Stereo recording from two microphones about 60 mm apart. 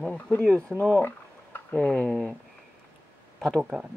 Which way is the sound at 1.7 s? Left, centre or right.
Centre.